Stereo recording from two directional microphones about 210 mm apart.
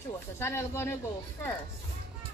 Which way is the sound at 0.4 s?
10° left (ahead or behind).